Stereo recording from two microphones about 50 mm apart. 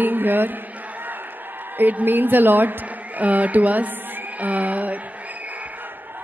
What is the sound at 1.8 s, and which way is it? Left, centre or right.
A woman's voice, right.